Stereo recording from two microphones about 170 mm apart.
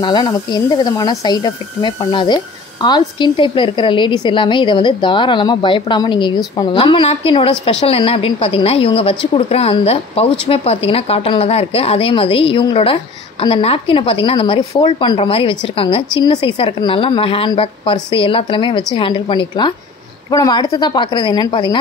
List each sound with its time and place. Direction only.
0.0 s a woman's voice: 25° left (ahead or behind)